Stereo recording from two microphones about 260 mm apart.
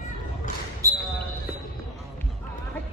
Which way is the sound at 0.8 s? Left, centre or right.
Centre.